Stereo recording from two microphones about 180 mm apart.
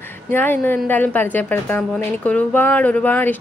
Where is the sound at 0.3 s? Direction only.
10° left (ahead or behind).